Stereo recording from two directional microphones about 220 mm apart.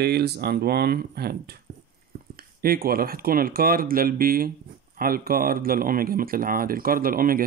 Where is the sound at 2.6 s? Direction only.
40° right (ahead or behind).